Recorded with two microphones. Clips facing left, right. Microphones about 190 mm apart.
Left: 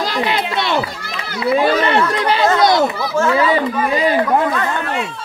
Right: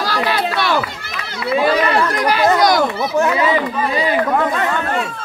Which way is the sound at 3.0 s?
20° right (ahead or behind).